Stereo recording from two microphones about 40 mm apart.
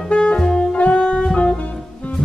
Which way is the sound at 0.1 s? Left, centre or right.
Left.